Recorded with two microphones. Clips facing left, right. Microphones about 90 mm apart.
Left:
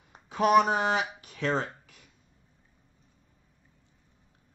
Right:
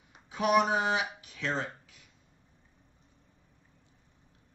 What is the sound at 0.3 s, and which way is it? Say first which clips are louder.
Speech: left 4 dB; 50° left (ahead or behind).